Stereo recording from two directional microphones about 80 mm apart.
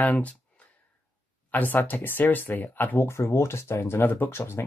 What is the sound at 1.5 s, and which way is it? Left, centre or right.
Speech, left.